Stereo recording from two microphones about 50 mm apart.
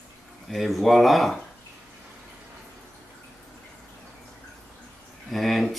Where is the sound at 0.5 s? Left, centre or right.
Centre.